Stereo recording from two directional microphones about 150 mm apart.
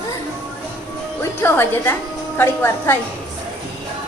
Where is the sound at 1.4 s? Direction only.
15° left (ahead or behind).